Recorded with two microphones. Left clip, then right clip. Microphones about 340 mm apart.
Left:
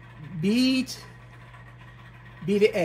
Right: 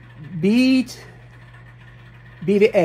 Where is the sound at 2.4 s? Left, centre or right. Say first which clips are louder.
Right 7 dB; right.